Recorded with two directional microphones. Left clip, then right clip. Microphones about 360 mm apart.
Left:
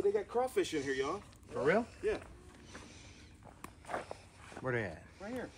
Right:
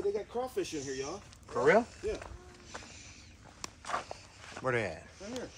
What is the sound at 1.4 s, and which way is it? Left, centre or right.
Speech, centre.